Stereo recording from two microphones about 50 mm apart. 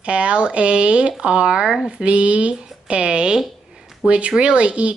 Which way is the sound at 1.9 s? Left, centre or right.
Right.